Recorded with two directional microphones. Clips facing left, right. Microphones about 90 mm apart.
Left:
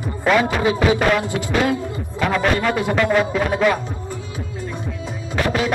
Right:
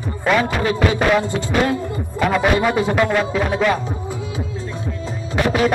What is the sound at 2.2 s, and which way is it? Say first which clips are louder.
Speech: right 2 dB; 10° right (ahead or behind).